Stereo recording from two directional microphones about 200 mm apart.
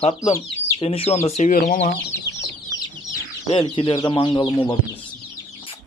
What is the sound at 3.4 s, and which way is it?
Speech, 30° left (ahead or behind).